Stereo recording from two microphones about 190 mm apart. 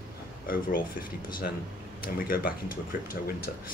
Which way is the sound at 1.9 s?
50° left (ahead or behind).